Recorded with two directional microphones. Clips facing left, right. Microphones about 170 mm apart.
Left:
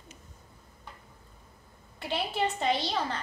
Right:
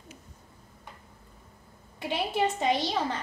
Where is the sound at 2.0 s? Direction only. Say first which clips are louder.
Right 3 dB; 15° right (ahead or behind).